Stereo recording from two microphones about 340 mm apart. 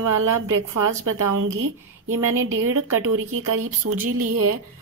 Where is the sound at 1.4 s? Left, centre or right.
Right.